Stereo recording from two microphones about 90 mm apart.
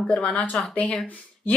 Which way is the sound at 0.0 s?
10° left (ahead or behind).